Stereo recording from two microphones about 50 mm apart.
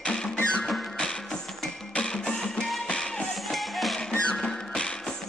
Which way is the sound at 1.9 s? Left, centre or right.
Centre.